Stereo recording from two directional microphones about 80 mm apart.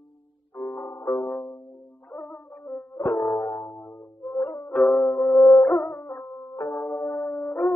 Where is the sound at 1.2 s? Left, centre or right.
Centre.